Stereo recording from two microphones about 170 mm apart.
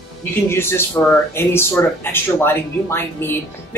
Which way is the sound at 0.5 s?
15° left (ahead or behind).